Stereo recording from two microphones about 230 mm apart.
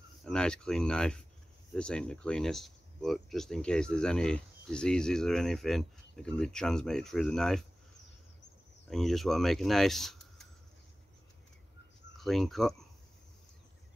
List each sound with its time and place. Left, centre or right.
0.2 s speech: centre
8.8 s speech: centre
12.2 s speech: centre